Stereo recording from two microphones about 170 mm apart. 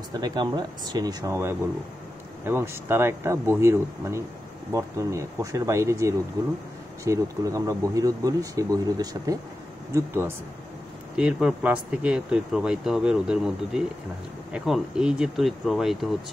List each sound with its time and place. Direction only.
0.1 s speech: 25° right (ahead or behind); by 16.1 s centre (ahead or behind)